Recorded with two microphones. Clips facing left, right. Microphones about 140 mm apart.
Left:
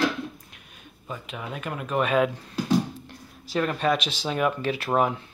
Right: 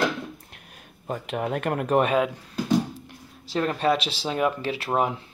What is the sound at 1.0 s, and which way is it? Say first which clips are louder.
Speech: right 7 dB; 55° right (ahead or behind).